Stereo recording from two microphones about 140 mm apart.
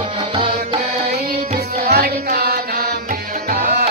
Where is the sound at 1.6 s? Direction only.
90° right.